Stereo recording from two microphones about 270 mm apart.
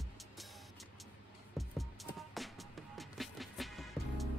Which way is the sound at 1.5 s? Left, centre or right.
Centre.